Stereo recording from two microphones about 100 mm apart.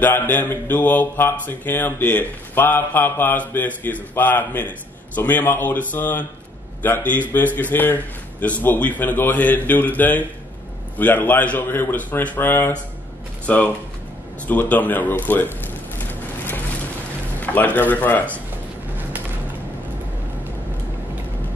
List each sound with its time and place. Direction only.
0.0 s a man's voice: 20° left (ahead or behind)
16.0 s vehicle: 20° left (ahead or behind)
17.4 s speech: 15° left (ahead or behind)